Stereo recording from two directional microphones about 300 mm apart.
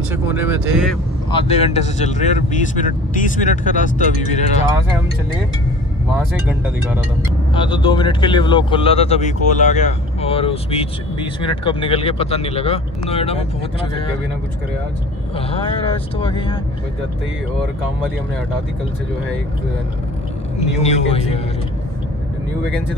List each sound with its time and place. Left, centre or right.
0.1 s speech: centre
1.3 s speech: centre
6.4 s speech: centre
7.5 s speech: centre
16.2 s speech: centre
20.5 s speech: left